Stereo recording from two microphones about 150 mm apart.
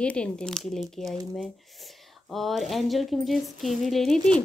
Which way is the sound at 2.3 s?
Centre (ahead or behind).